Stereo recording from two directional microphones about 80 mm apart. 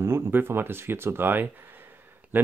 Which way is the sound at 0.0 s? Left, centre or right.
Right.